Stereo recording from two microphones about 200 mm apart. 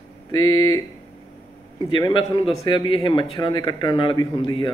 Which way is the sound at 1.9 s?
20° left (ahead or behind).